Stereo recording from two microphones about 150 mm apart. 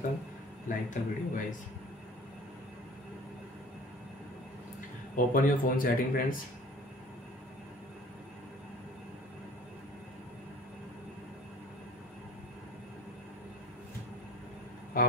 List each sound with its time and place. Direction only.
0.7 s speech: 65° left (ahead or behind)
5.1 s speech: 65° left (ahead or behind)
15.0 s speech: 65° left (ahead or behind)